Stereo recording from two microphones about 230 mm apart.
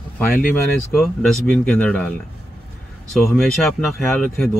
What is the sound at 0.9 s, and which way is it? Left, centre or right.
Speech, centre.